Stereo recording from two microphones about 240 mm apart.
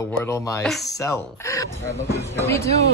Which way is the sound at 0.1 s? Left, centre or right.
Centre.